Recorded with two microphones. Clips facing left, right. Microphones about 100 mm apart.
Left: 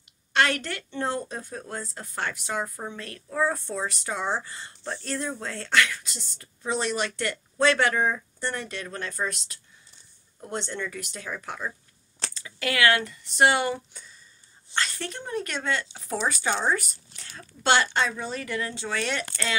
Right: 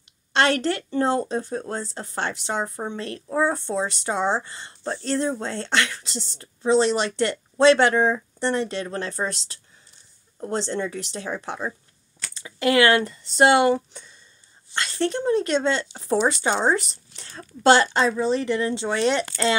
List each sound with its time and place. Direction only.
0.3 s a woman's voice: 30° right (ahead or behind)
14.9 s speech: 30° right (ahead or behind)
17.6 s speech: 35° right (ahead or behind)